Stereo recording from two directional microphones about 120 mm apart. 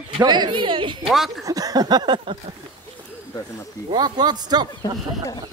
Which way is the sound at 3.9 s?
35° right (ahead or behind).